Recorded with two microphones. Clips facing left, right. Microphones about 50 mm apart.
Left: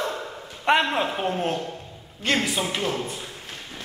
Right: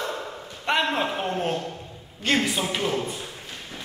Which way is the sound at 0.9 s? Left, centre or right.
Centre.